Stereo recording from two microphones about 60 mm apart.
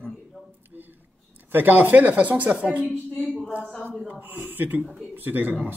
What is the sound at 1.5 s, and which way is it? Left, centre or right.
Speech, right.